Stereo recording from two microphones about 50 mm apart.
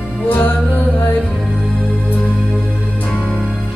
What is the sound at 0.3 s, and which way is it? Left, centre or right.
Music, left.